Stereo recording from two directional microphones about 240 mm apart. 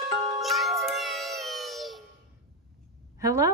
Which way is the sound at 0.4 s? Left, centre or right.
Centre.